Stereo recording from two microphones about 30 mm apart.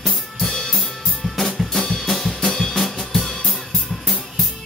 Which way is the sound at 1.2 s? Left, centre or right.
Centre.